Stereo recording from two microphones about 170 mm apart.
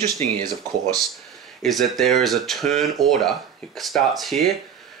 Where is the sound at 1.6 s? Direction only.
Centre (ahead or behind).